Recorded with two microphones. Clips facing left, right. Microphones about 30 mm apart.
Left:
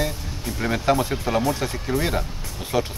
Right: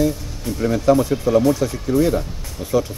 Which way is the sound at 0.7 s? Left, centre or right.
Left.